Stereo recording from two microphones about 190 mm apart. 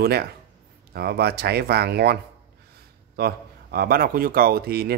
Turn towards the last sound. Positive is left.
turn(degrees=-55)  # may be behind; listen again after turning